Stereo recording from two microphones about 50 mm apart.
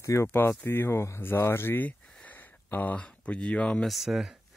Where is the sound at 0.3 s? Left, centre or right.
Left.